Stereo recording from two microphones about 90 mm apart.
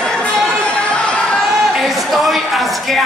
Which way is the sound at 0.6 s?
10° left (ahead or behind).